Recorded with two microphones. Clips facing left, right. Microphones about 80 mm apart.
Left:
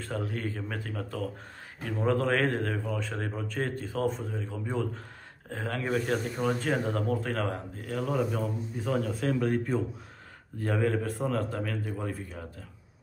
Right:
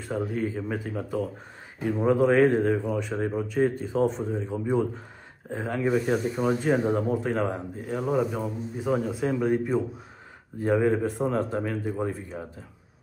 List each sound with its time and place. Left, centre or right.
0.0 s speech: centre
4.6 s speech: centre